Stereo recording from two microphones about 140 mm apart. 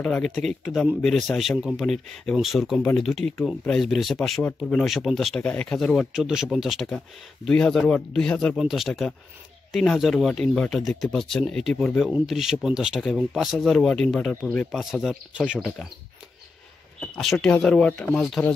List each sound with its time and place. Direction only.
0.0 s speech: 5° left (ahead or behind)
2.8 s speech: 10° left (ahead or behind); by 15.6 s 5° right (ahead or behind)
17.1 s speech: centre (ahead or behind)